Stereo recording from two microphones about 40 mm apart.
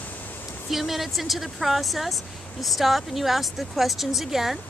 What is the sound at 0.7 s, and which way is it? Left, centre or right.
Speech, centre.